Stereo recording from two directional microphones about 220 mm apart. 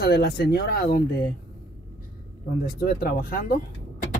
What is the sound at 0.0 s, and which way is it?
Speech, 45° left (ahead or behind).